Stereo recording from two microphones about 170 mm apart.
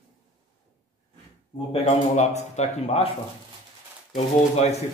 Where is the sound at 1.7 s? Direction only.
40° left (ahead or behind).